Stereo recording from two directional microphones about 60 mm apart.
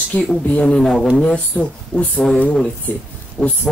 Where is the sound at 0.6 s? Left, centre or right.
Centre.